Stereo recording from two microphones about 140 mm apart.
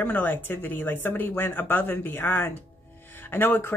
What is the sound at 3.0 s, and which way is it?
Music, 15° left (ahead or behind).